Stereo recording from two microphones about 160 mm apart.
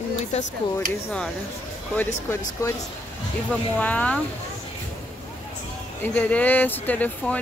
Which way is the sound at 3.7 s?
10° left (ahead or behind).